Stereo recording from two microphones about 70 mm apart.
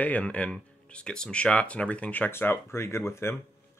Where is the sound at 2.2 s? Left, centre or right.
Left.